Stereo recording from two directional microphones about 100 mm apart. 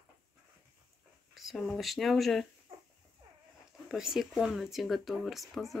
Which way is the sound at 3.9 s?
5° right (ahead or behind).